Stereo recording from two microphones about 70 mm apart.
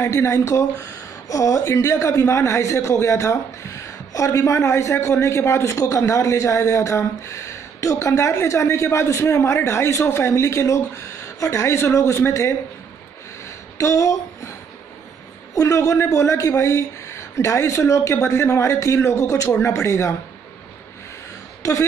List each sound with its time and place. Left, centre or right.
0.0 s a man's voice: left
13.7 s a sound: left
15.5 s a man's voice: left